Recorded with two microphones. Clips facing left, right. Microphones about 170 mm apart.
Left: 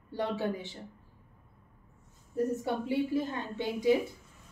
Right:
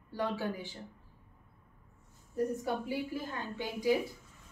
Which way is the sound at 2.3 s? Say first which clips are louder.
Left 2 dB; 25° left (ahead or behind).